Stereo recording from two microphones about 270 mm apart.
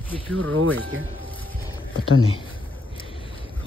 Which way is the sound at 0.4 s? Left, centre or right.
Right.